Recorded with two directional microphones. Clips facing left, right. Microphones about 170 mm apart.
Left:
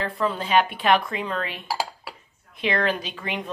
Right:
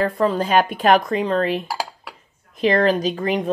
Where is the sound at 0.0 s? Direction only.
45° right (ahead or behind).